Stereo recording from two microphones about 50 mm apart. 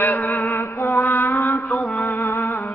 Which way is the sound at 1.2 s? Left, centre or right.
Left.